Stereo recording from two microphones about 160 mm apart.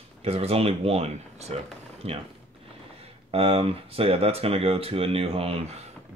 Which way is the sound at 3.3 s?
35° right (ahead or behind).